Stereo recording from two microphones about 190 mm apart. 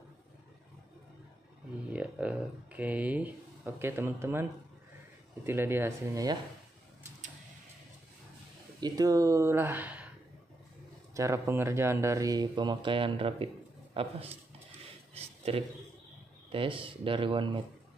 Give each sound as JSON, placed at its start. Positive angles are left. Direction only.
{"t": 1.9, "sound": "speech", "side_deg": -5}
{"t": 8.8, "sound": "speech", "side_deg": -20}
{"t": 11.1, "sound": "a man's voice", "side_deg": -15}
{"t": 15.1, "sound": "a sound", "side_deg": -30}
{"t": 16.5, "sound": "speech", "side_deg": -30}